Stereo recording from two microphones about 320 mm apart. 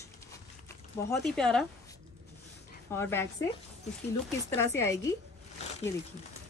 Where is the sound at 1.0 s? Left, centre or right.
Centre.